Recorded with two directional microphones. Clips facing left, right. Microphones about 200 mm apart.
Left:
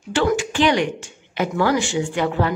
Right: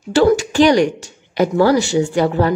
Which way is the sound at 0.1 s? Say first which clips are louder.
Right 7 dB; 40° right (ahead or behind).